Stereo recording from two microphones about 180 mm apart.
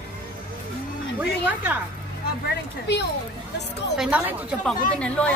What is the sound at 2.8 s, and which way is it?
Speech, 70° left (ahead or behind).